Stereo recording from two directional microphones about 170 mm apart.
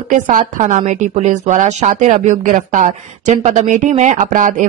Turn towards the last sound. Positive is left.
turn(degrees=-50)  # may be behind; listen again after turning